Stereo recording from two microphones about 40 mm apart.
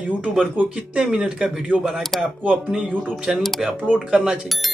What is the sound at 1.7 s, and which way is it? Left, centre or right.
Speech, right.